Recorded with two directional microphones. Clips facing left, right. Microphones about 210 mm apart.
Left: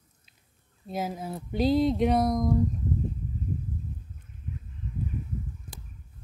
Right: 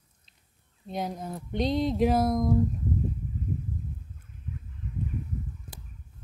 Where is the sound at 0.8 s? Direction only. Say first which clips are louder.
Left 1 dB; 5° left (ahead or behind).